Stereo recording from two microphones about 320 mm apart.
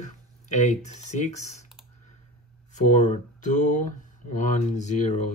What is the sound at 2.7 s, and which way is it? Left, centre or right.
Speech, left.